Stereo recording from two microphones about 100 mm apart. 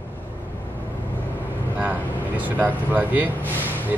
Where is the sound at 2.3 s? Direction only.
15° right (ahead or behind).